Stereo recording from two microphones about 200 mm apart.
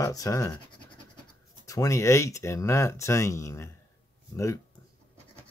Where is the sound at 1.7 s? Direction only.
15° left (ahead or behind).